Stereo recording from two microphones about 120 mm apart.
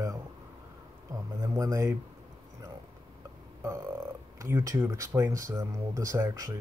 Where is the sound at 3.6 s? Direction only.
25° right (ahead or behind).